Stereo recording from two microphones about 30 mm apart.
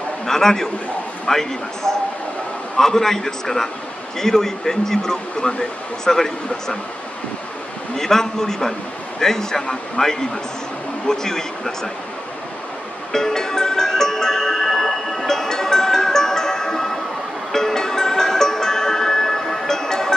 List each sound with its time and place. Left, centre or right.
0.3 s speech: centre
8.0 s a man's voice: centre
13.1 s music: centre